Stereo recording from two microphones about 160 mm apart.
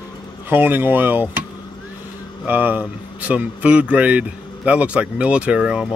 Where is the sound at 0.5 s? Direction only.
15° right (ahead or behind).